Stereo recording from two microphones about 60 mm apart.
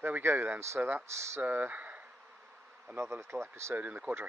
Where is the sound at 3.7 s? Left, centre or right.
Right.